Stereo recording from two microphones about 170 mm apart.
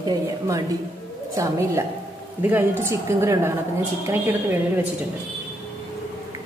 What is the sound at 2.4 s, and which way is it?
A woman's voice, 10° right (ahead or behind).